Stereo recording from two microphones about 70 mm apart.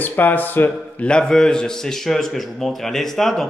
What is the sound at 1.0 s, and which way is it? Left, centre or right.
A man's voice, centre.